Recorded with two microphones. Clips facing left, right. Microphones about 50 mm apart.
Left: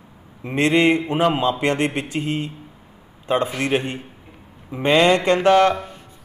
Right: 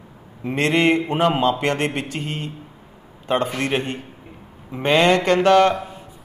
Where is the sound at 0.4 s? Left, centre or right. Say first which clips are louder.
Left 1 dB; centre.